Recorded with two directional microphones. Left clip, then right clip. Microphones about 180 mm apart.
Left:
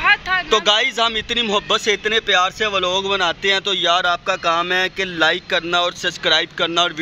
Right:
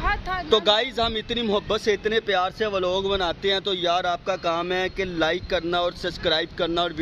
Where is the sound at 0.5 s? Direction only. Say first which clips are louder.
Left 3 dB; centre (ahead or behind).